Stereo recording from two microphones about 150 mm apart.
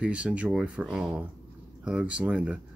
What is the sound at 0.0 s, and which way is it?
Speech, 10° right (ahead or behind).